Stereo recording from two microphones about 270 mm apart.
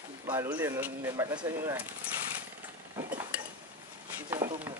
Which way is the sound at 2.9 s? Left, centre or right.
Centre.